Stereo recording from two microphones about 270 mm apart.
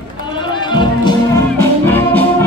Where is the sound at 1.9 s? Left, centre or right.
Centre.